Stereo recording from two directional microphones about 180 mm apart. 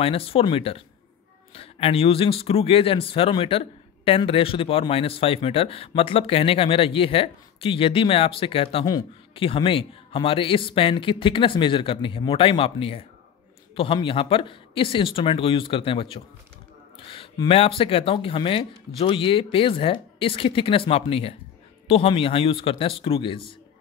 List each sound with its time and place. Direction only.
0.0 s speech: 30° left (ahead or behind)